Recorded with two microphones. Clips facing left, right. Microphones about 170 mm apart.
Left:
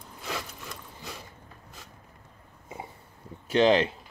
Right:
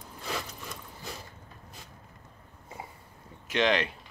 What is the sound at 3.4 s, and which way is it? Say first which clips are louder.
Speech: left 6 dB; 30° left (ahead or behind).